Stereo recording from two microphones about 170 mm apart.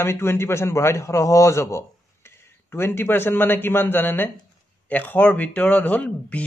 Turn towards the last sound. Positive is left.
turn(degrees=10)  # may be behind; listen again after turning